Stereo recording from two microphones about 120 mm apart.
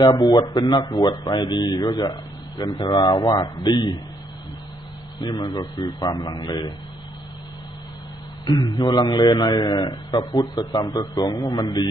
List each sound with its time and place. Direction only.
0.0 s a man's voice: 35° left (ahead or behind)
5.2 s a man's voice: 30° left (ahead or behind)
8.5 s a man's voice: 35° left (ahead or behind)